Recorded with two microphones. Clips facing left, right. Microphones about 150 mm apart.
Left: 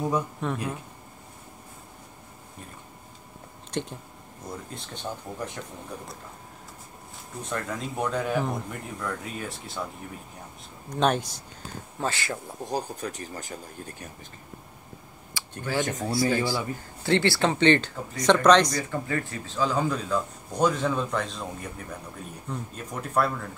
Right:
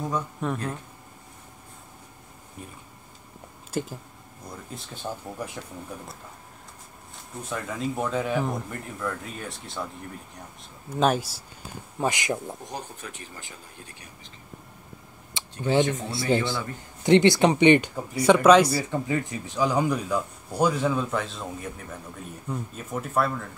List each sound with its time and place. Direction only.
0.4 s speech: 5° right (ahead or behind)
3.7 s speech: 5° right (ahead or behind)
7.4 s speech: centre (ahead or behind)
10.9 s speech: 5° right (ahead or behind)
12.0 s speech: 15° right (ahead or behind)
12.6 s speech: 35° left (ahead or behind)
15.6 s speech: 20° right (ahead or behind); by 23.4 s centre (ahead or behind)